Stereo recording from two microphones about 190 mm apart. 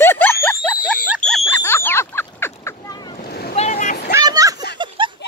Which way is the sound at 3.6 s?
35° left (ahead or behind).